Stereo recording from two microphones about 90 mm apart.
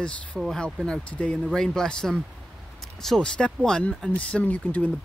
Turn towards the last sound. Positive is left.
turn(degrees=15)  # may be behind; listen again after turning